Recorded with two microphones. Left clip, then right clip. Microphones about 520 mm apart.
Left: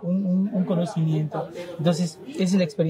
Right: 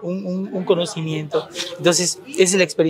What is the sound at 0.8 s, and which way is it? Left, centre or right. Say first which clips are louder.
Speech: right 4 dB; right.